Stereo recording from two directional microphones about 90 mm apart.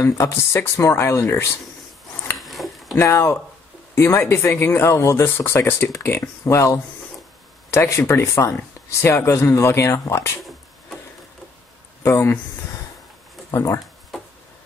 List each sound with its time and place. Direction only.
0.0 s speech: 30° left (ahead or behind)
2.3 s a sound: centre (ahead or behind)
3.0 s speech: 30° left (ahead or behind)
12.0 s speech: 30° left (ahead or behind)
13.5 s speech: 35° left (ahead or behind)